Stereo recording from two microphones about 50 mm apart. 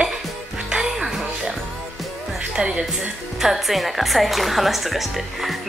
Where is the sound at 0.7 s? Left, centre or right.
Centre.